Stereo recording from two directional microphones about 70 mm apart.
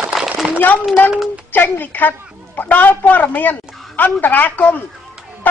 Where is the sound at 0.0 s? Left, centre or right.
Centre.